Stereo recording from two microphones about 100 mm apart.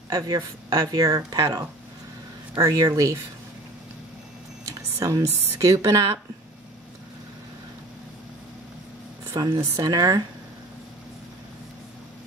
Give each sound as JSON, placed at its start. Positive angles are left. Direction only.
{"t": 0.1, "sound": "speech", "side_deg": -40}
{"t": 4.6, "sound": "speech", "side_deg": -35}
{"t": 9.3, "sound": "speech", "side_deg": -45}